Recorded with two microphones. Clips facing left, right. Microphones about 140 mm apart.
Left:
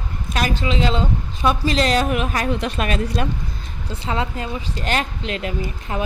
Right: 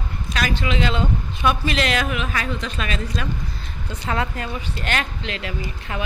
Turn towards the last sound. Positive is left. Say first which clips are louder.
# left 3 dB
turn(degrees=40)  # may be behind; listen again after turning